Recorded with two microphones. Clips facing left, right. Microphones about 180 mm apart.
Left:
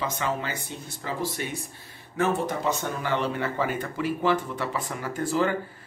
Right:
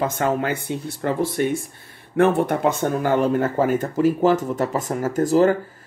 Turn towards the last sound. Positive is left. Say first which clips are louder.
# right 9 dB
turn(degrees=-40)  # may be behind; listen again after turning